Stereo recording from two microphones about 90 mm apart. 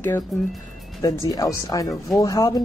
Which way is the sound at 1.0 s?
40° left (ahead or behind).